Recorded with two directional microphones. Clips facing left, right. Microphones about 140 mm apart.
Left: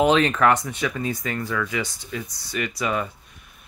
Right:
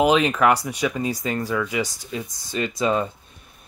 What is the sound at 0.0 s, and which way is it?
Speech, 10° right (ahead or behind).